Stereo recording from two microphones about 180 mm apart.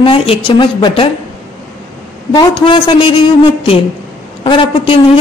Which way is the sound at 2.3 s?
25° left (ahead or behind).